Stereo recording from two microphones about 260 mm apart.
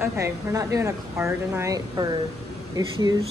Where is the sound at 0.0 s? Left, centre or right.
Centre.